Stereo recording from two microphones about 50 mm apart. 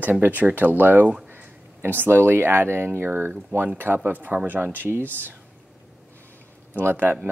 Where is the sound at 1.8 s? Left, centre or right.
Right.